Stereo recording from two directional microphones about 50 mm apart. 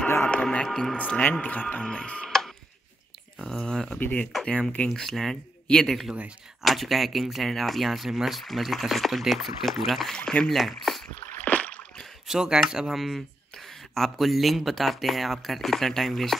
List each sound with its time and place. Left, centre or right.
0.3 s music: centre
0.7 s speech: centre
0.9 s music: left
1.4 s speech: left
1.8 s music: left
2.2 s tick-tock: centre
3.3 s speech: centre
10.1 s speech: centre
10.6 s speech: centre
11.4 s rowboat: left
12.3 s speech: centre
12.9 s speech: centre